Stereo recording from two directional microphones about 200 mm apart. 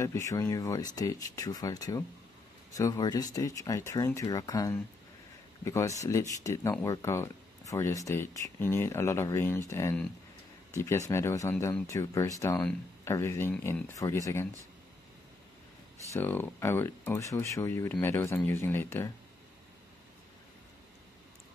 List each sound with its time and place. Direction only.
0.0 s speech: 15° left (ahead or behind)
16.1 s speech: 10° left (ahead or behind)